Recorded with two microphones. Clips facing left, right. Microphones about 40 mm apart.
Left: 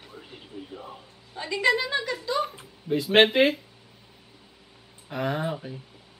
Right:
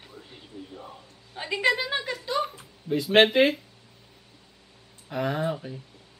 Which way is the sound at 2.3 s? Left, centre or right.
Centre.